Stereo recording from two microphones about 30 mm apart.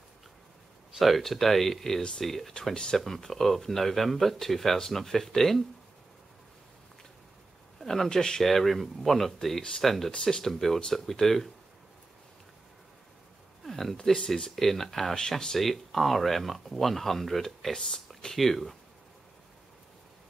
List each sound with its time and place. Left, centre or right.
0.9 s speech: centre
2.7 s speech: left
3.1 s speech: centre
7.8 s speech: centre
8.1 s speech: left
8.5 s speech: centre
10.1 s speech: left
10.4 s speech: centre
13.7 s a sound: centre
14.1 s speech: centre
15.1 s speech: left
15.6 s speech: centre
17.7 s speech: centre
18.4 s speech: centre